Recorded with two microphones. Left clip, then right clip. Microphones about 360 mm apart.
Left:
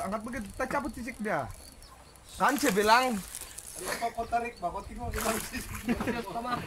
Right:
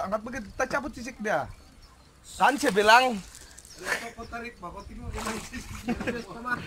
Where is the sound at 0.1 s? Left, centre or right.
Right.